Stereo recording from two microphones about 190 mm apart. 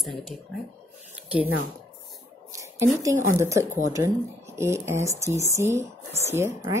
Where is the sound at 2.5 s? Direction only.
15° right (ahead or behind).